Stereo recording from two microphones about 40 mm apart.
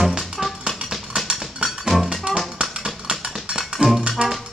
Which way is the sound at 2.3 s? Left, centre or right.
Right.